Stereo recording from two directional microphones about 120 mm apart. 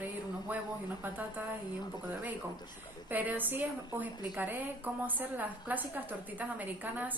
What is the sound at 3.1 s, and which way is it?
A woman's voice, 15° right (ahead or behind).